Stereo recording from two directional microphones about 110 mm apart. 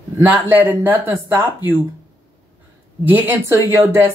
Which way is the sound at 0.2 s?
15° right (ahead or behind).